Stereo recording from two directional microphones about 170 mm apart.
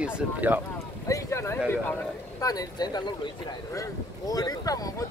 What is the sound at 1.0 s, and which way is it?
Speech, 20° left (ahead or behind).